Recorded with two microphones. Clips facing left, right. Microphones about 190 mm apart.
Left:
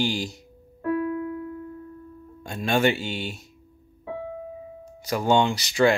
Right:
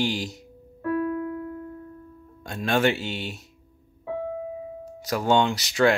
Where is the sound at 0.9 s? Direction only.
20° left (ahead or behind).